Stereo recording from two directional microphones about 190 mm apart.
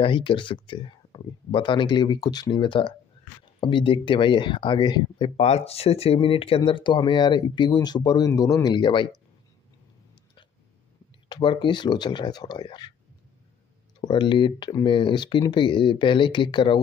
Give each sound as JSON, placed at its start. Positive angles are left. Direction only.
{"t": 0.0, "sound": "speech", "side_deg": 25}
{"t": 5.4, "sound": "speech", "side_deg": 35}
{"t": 11.3, "sound": "speech", "side_deg": 25}
{"t": 14.0, "sound": "speech", "side_deg": 25}